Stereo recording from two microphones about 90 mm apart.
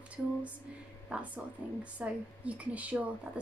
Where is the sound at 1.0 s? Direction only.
15° right (ahead or behind).